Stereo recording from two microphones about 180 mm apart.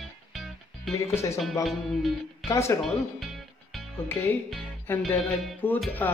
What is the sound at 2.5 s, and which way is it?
Speech, 15° left (ahead or behind).